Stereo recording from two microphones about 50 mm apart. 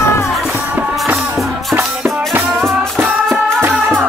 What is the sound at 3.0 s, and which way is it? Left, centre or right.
Music, right.